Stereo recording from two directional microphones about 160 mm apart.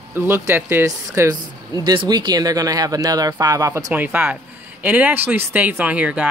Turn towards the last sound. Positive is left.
turn(degrees=-10)  # may be behind; listen again after turning